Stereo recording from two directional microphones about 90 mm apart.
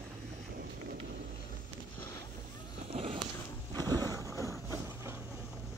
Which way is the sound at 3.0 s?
85° right.